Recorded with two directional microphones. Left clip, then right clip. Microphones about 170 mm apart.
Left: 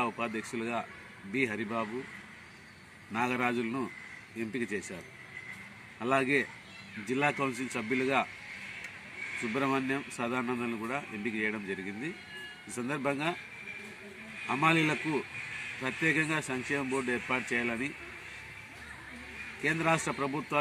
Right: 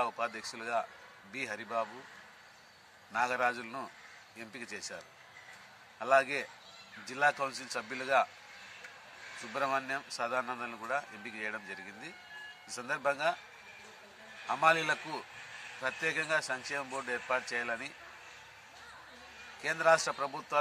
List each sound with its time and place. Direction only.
0.0 s a man's voice: 15° right (ahead or behind)
3.1 s a man's voice: 15° right (ahead or behind)
5.9 s a man's voice: 15° right (ahead or behind)
9.5 s a man's voice: 15° right (ahead or behind)
14.5 s a man's voice: 15° right (ahead or behind)
19.6 s a man's voice: 10° right (ahead or behind)